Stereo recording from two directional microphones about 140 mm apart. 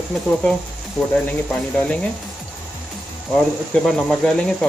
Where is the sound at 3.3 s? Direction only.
5° left (ahead or behind).